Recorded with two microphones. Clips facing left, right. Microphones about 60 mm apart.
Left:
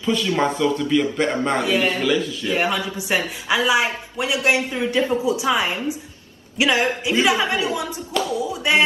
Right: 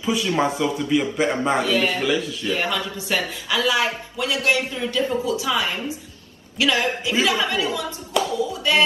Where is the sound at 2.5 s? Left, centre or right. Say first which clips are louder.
Left 2 dB; left.